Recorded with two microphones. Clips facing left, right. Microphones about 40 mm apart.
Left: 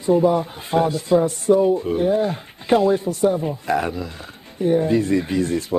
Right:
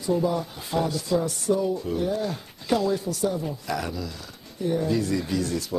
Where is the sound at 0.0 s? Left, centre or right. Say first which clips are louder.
Left 8 dB; left.